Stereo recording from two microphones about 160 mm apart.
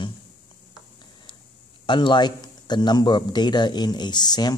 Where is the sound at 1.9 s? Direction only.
30° left (ahead or behind).